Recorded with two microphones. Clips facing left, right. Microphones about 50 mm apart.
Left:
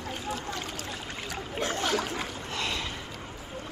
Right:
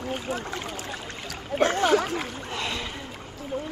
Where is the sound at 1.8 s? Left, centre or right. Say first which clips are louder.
Right 7 dB; centre.